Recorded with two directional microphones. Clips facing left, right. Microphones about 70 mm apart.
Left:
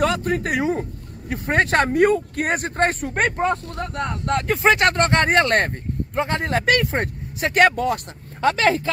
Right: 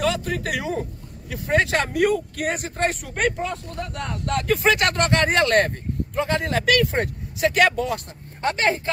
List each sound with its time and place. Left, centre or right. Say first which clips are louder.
0.0 s speech: left 3 dB; left
3.9 s speech: left 3 dB; left